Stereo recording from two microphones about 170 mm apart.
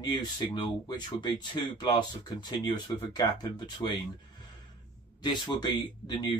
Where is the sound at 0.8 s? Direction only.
25° left (ahead or behind).